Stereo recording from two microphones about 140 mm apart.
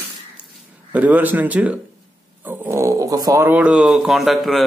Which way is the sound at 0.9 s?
10° right (ahead or behind).